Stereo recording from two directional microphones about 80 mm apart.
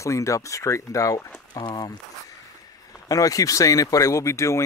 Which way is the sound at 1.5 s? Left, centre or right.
Left.